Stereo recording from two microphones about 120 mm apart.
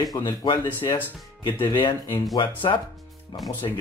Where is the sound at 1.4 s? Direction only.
45° left (ahead or behind).